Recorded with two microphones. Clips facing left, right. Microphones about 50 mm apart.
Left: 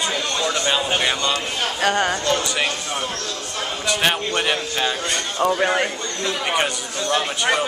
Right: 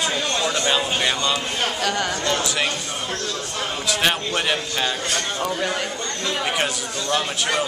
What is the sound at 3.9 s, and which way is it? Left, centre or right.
A man's voice, centre.